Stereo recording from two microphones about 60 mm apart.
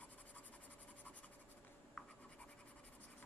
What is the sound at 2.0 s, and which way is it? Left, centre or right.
Scratch, centre.